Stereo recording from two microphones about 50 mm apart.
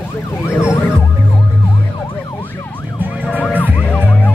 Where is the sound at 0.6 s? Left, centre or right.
Left.